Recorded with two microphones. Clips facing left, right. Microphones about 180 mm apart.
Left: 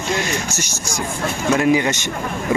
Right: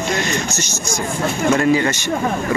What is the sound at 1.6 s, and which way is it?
Speech, 15° left (ahead or behind).